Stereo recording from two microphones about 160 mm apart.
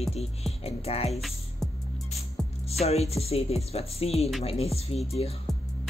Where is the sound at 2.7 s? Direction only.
40° left (ahead or behind).